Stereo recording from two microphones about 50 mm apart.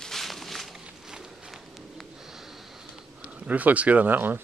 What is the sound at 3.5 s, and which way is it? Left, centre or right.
Speech, right.